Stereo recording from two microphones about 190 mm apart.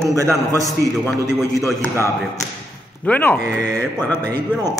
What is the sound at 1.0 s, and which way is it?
A man's voice, 15° left (ahead or behind).